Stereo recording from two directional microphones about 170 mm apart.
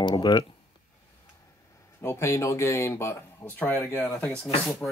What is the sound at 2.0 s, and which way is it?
Speech, 15° left (ahead or behind).